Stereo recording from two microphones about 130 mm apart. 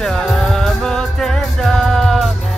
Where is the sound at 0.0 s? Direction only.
5° left (ahead or behind).